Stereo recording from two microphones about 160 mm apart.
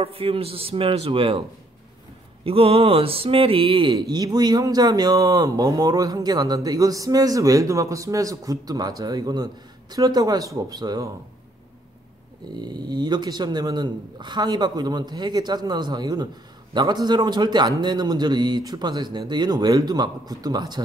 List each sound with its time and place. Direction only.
0.0 s a man's voice: 35° right (ahead or behind)
2.4 s speech: 35° right (ahead or behind)
12.5 s speech: 25° right (ahead or behind)